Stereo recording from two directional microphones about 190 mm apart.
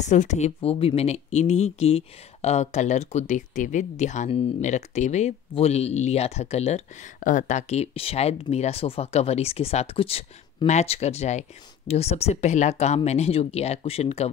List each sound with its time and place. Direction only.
0.0 s speech: 40° left (ahead or behind)